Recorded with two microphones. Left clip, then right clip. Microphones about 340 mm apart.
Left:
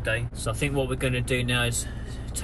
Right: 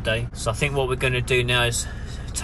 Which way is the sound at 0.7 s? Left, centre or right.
Centre.